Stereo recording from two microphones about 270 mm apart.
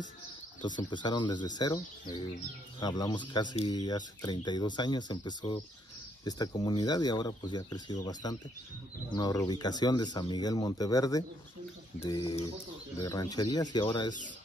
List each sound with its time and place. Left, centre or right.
0.6 s speech: centre